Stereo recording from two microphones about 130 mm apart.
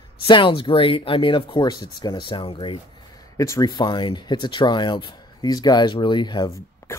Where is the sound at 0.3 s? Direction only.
40° left (ahead or behind).